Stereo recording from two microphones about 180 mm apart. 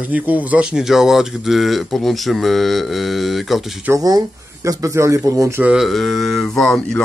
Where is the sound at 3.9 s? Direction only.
20° right (ahead or behind).